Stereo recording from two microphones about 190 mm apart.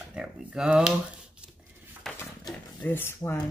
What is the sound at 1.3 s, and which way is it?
Dishes, 5° right (ahead or behind).